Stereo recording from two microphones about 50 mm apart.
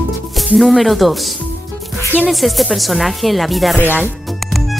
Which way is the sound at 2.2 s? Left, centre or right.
Centre.